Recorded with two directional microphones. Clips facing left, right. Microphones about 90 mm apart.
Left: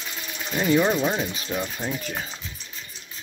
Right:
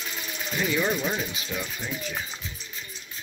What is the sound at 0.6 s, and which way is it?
Speech, 30° left (ahead or behind).